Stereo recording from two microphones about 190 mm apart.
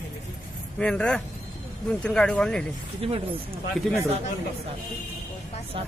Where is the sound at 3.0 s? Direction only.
30° right (ahead or behind).